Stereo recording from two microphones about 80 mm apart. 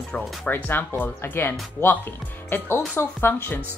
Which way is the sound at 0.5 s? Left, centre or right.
Left.